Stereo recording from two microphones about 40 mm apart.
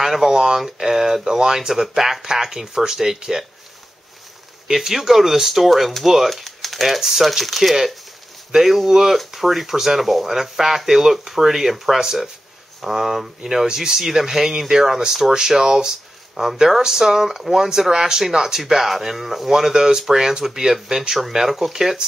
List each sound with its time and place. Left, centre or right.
0.0 s speech: centre
4.6 s speech: centre
6.3 s typewriter: centre
7.0 s speech: centre